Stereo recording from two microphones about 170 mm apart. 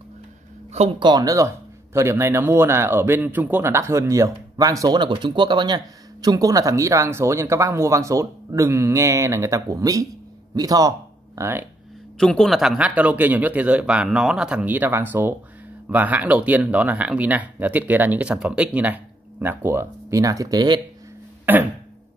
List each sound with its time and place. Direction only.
0.7 s a man's voice: 30° right (ahead or behind); by 11.7 s 15° right (ahead or behind)
12.2 s a man's voice: 5° left (ahead or behind); by 20.8 s 25° right (ahead or behind)
21.5 s a man's voice: 10° right (ahead or behind)